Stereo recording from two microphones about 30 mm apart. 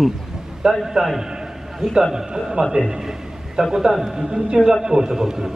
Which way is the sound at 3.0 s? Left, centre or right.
Centre.